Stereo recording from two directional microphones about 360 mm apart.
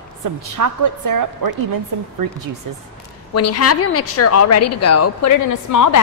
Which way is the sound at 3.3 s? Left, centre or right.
Left.